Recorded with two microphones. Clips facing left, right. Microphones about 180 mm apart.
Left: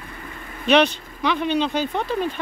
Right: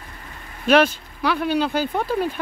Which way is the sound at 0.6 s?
5° right (ahead or behind).